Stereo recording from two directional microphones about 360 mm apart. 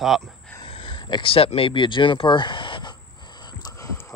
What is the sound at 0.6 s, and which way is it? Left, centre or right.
Speech, centre.